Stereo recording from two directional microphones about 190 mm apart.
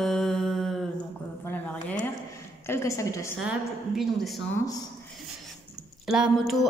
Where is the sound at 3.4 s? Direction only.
Centre (ahead or behind).